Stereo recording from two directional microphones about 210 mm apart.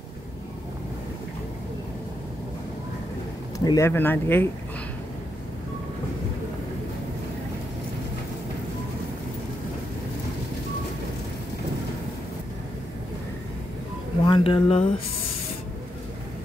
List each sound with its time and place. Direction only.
3.5 s speech: 15° left (ahead or behind)
14.2 s speech: 25° left (ahead or behind)